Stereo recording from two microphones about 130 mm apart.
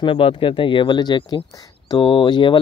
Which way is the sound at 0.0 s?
45° left (ahead or behind).